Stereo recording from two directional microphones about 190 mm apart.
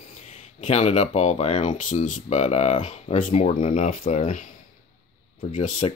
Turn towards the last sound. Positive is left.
turn(degrees=35)  # may be behind; listen again after turning